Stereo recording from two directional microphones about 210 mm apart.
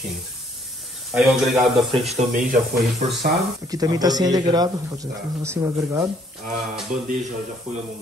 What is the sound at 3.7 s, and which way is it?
A man's voice, 20° right (ahead or behind).